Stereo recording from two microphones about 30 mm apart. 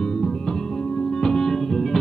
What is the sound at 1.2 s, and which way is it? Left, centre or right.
Music, left.